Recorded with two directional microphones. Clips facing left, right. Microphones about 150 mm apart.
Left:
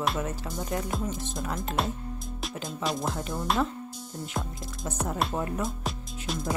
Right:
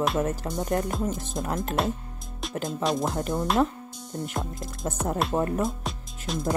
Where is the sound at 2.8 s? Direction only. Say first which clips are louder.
Right 4 dB; centre (ahead or behind).